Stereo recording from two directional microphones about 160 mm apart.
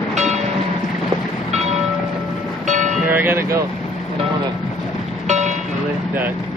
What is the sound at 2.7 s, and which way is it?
Music, 50° right (ahead or behind).